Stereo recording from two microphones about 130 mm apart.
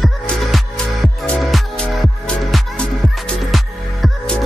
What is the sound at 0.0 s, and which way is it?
Music, centre (ahead or behind).